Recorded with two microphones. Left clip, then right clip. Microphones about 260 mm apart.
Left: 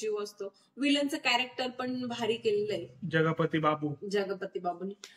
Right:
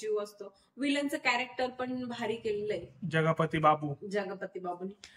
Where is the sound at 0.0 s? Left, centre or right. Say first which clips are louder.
Even; centre.